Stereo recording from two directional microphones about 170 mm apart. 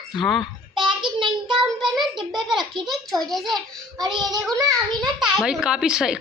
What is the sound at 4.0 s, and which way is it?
Child singing, 25° right (ahead or behind).